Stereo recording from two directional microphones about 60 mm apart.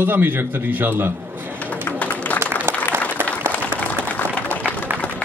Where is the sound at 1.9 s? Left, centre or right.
Left.